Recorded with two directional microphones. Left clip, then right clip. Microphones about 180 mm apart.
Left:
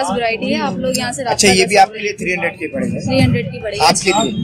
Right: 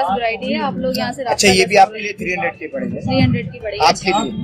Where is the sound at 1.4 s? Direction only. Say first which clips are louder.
Even; 15° right (ahead or behind).